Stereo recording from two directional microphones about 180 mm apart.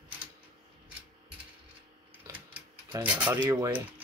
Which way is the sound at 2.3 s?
10° right (ahead or behind).